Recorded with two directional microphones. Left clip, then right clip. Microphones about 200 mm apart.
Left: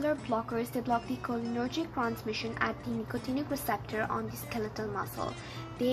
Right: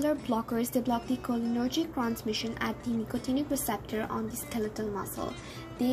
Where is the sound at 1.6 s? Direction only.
20° right (ahead or behind).